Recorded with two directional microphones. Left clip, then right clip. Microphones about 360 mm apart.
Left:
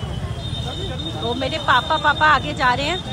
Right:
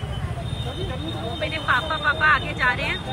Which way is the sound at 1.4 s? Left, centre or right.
Centre.